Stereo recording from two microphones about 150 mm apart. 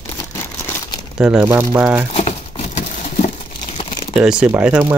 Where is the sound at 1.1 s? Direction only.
5° right (ahead or behind).